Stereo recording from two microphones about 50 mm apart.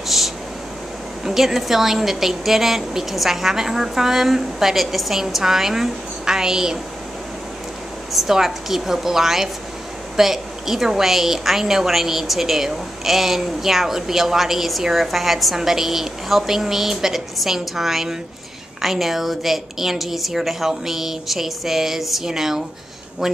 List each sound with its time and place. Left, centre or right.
0.1 s a sound: centre
1.2 s a woman's voice: centre
8.1 s a woman's voice: centre